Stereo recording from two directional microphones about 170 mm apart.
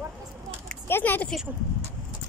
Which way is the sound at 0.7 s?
10° left (ahead or behind).